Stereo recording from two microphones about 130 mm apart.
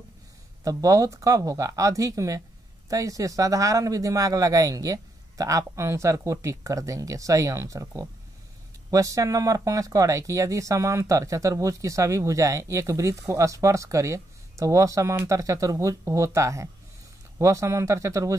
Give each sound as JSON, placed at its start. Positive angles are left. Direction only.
{"t": 0.7, "sound": "speech", "side_deg": -25}